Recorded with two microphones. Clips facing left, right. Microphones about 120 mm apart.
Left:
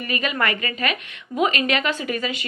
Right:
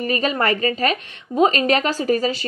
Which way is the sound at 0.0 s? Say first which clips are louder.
Right 4 dB; 35° right (ahead or behind).